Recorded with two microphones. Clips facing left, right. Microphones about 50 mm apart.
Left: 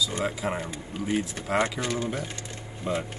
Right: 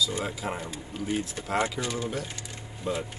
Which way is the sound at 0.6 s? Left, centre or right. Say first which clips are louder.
Left 2 dB; left.